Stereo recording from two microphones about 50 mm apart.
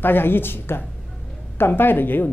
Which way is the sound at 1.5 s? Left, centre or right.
Left.